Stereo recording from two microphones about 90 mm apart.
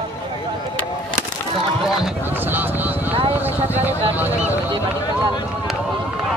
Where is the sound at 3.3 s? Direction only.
20° right (ahead or behind).